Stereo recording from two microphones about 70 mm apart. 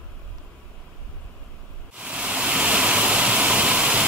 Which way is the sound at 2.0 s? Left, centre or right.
Centre.